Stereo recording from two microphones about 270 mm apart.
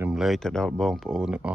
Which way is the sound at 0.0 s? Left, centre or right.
Centre.